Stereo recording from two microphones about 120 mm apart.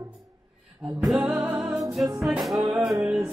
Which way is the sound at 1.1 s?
5° right (ahead or behind).